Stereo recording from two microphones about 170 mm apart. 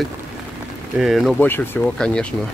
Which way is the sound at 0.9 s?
Centre (ahead or behind).